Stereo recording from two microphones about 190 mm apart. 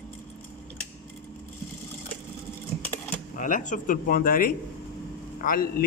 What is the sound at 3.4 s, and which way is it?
A man's voice, 40° left (ahead or behind).